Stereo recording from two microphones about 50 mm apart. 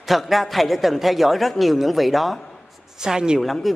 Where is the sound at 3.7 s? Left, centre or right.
Centre.